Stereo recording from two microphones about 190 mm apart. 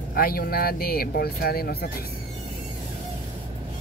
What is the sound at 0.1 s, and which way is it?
Speech, 50° left (ahead or behind).